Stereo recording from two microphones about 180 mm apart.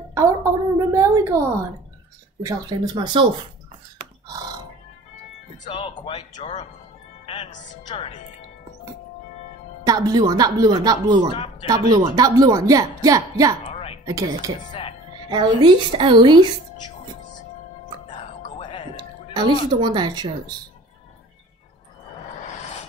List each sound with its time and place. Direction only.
0.1 s a sound: 15° right (ahead or behind)
2.4 s a woman's voice: 25° right (ahead or behind)
5.6 s speech: 30° left (ahead or behind)
7.2 s a woman's voice: 30° left (ahead or behind)
9.8 s a woman's voice: 20° right (ahead or behind)
13.7 s a sound: 30° left (ahead or behind)
14.0 s a woman's voice: 20° right (ahead or behind)
14.7 s music: 30° left (ahead or behind)
15.2 s a woman's voice: 25° right (ahead or behind)
19.7 s a woman's voice: 25° right (ahead or behind)